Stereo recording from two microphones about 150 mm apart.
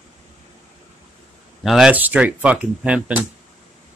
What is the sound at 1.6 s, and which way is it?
Speech, centre (ahead or behind).